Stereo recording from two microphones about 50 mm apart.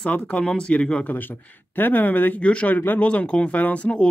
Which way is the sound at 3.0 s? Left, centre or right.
Left.